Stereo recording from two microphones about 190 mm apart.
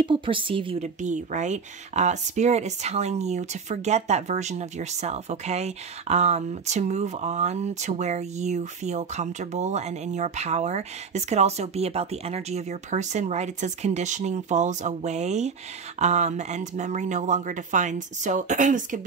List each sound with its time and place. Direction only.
0.0 s a woman's voice: 25° right (ahead or behind)
0.8 s speech: 40° right (ahead or behind)